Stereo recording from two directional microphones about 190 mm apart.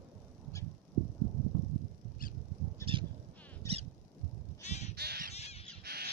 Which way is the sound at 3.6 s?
15° left (ahead or behind).